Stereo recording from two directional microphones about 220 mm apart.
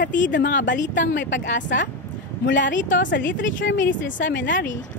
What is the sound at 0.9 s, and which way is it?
A woman's voice, 55° left (ahead or behind).